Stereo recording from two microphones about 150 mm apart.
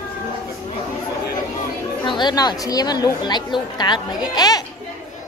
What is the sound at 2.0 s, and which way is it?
A woman's voice, 30° left (ahead or behind).